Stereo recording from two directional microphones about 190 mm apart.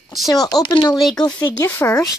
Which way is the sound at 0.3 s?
20° left (ahead or behind).